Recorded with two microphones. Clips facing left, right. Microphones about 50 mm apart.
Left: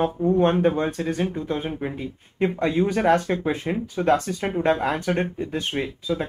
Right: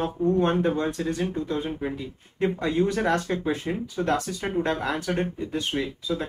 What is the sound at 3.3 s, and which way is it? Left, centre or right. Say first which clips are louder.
Speech: left 2 dB; left.